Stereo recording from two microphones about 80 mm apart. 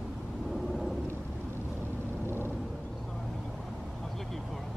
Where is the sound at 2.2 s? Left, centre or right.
Right.